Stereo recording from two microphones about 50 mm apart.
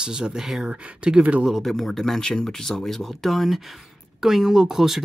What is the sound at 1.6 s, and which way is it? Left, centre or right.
Speech, centre.